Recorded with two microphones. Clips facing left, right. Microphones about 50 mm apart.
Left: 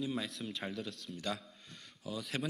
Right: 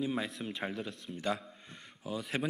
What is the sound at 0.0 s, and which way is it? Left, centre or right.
A man's voice, centre.